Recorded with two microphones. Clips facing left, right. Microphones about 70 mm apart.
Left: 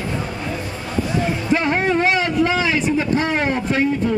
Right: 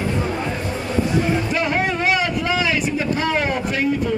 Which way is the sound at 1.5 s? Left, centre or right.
Left.